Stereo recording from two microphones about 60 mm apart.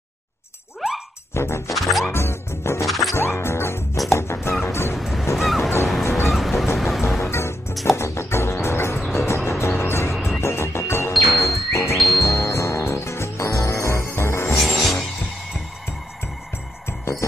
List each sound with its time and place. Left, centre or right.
0.7 s music: centre
1.3 s music: left
1.7 s music: centre
2.1 s music: left
2.9 s music: centre
3.2 s music: left
4.9 s music: centre
6.0 s music: left
6.3 s music: centre
7.2 s music: left
10.1 s music: centre
10.4 s music: left
14.6 s music: centre